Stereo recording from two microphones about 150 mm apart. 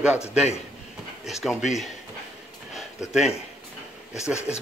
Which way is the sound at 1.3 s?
Centre (ahead or behind).